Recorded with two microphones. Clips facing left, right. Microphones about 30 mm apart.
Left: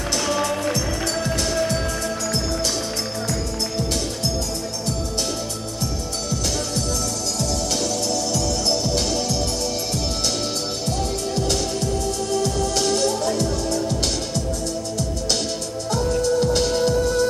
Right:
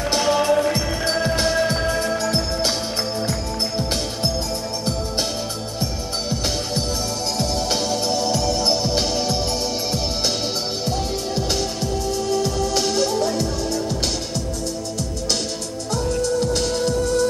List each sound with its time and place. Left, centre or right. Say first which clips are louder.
0.1 s music: right 5 dB; right
7.3 s music: right 2 dB; right
10.9 s music: even; centre
15.9 s music: left 1 dB; centre